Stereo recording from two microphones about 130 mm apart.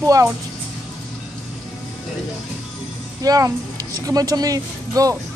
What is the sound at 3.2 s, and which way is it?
Speech, 30° right (ahead or behind).